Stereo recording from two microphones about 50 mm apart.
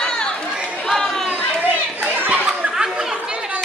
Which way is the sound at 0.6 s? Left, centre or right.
Right.